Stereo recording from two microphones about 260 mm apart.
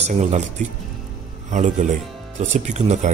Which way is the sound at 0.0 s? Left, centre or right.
Right.